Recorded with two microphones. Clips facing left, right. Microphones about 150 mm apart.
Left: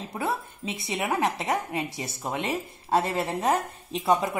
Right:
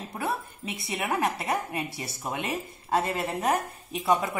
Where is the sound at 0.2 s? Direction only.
25° left (ahead or behind).